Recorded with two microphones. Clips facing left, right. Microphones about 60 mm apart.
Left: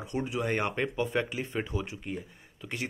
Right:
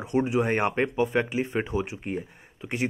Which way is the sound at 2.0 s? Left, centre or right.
Right.